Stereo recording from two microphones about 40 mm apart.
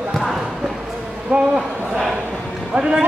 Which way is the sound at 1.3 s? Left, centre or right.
Right.